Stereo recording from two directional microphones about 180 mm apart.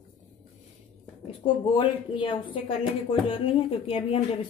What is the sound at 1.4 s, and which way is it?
Speech, 25° left (ahead or behind).